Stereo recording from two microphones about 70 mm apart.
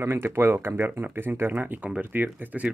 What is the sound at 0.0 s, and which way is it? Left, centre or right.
Speech, right.